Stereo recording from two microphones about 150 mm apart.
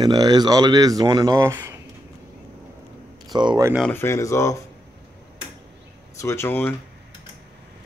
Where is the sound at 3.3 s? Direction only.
30° right (ahead or behind).